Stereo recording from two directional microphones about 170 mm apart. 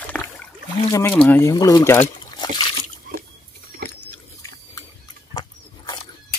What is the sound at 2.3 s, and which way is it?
Liquid, 25° left (ahead or behind).